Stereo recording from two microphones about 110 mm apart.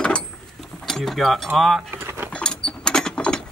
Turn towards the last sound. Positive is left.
turn(degrees=5)  # may be behind; listen again after turning